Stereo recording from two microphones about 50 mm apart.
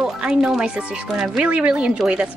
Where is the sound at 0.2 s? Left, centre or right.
Centre.